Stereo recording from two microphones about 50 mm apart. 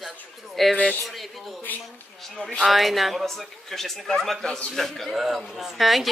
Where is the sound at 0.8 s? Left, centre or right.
Left.